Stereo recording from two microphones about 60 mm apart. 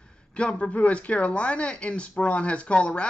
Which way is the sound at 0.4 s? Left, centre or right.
Centre.